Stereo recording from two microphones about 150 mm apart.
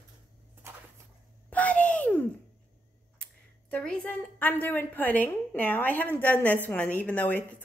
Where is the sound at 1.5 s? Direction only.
10° left (ahead or behind).